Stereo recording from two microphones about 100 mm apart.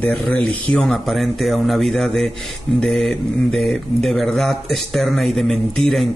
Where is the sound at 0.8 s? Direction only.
Centre (ahead or behind).